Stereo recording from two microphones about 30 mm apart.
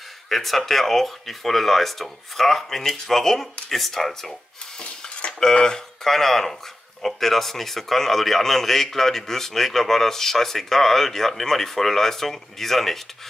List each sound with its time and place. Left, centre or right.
0.3 s a man's voice: centre
5.4 s speech: left
6.0 s a man's voice: centre